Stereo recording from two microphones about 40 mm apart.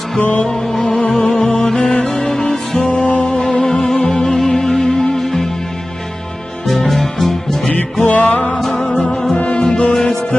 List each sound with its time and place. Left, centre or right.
0.4 s music: centre
0.9 s music: left
1.2 s music: centre
1.8 s music: left
2.1 s music: centre
2.8 s music: left
3.6 s music: centre
6.7 s music: centre
7.6 s music: left
8.5 s music: centre
9.3 s music: left